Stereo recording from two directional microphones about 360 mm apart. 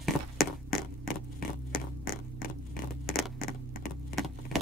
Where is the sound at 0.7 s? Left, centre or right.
Left.